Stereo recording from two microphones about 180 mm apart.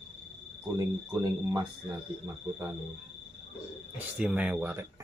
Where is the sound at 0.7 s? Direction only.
20° right (ahead or behind).